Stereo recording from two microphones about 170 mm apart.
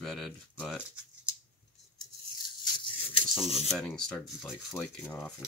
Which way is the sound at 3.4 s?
35° left (ahead or behind).